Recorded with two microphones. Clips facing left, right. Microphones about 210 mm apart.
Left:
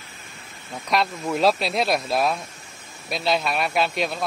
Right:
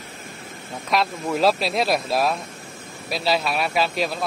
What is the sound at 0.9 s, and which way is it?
A man's voice, centre (ahead or behind).